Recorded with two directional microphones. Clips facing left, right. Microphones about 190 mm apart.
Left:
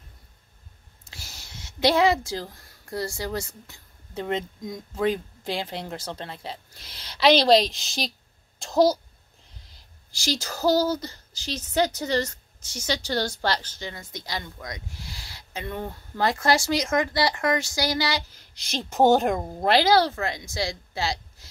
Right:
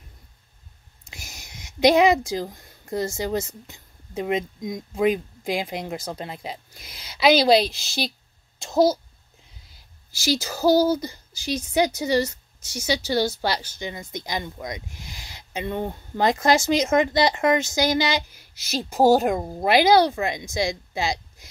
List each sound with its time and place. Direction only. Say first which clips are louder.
1.1 s a child's voice: right 1 dB; 15° right (ahead or behind)